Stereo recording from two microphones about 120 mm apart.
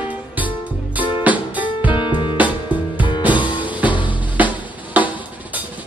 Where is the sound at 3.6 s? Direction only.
15° right (ahead or behind).